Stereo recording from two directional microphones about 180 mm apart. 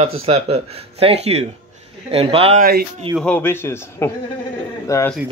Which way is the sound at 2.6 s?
60° right (ahead or behind).